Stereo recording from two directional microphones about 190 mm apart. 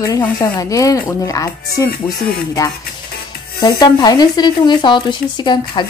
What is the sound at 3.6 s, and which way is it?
Speech, 20° left (ahead or behind).